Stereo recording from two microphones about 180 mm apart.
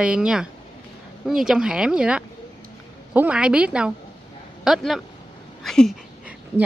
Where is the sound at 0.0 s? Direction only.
5° right (ahead or behind).